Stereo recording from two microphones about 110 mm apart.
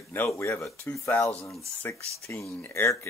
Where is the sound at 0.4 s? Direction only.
25° left (ahead or behind).